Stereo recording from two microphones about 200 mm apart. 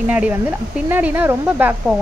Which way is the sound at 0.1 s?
5° right (ahead or behind).